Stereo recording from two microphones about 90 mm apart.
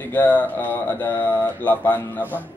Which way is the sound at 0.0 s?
20° left (ahead or behind).